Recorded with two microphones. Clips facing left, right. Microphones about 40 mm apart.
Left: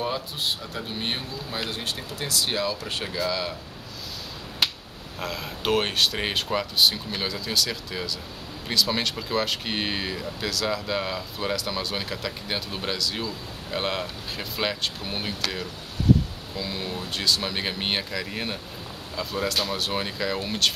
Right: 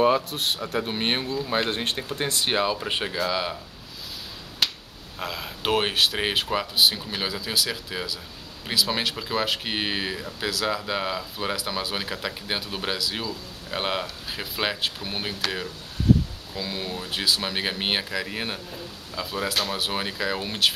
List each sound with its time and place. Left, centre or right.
0.0 s speech: right
0.4 s a man's voice: right
0.8 s speech: right; by 3.5 s centre
4.6 s finger snapping: centre
5.2 s speech: centre